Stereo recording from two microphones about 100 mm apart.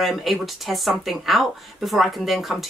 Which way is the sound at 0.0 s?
Centre (ahead or behind).